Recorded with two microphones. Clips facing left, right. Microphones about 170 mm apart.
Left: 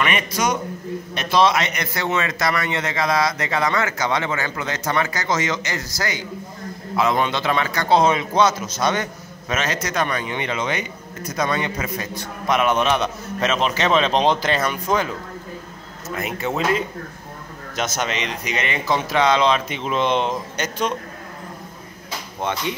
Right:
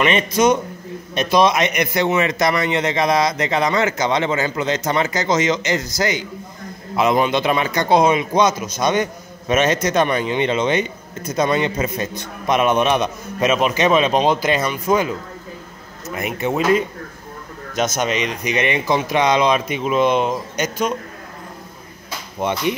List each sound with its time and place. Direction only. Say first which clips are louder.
0.0 s a man's voice: right 6 dB; 25° right (ahead or behind)
16.2 s a man's voice: right 3 dB; 15° right (ahead or behind)
17.7 s a man's voice: right 5 dB; 20° right (ahead or behind)